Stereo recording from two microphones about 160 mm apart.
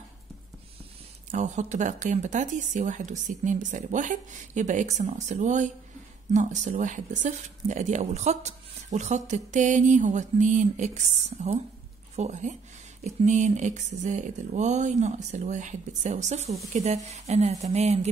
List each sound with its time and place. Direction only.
1.3 s speech: 50° right (ahead or behind)